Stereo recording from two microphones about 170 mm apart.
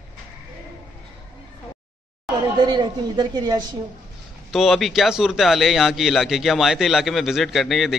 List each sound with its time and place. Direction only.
2.6 s speech: 25° right (ahead or behind)
4.5 s speech: centre (ahead or behind)